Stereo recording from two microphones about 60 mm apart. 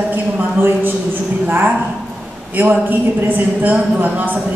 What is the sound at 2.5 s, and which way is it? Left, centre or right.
Speech, right.